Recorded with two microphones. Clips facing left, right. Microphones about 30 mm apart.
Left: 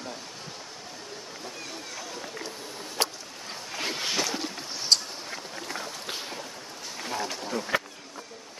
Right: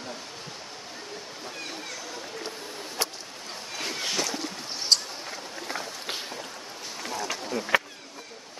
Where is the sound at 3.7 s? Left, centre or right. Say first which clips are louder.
Left 1 dB; centre.